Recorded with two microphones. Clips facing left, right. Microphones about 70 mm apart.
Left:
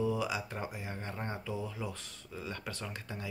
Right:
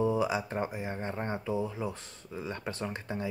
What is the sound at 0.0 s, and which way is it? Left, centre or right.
Speech, right.